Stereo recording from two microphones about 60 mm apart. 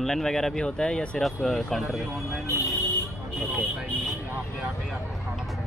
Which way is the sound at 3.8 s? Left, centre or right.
Centre.